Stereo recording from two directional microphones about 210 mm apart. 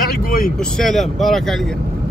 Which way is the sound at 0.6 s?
Centre (ahead or behind).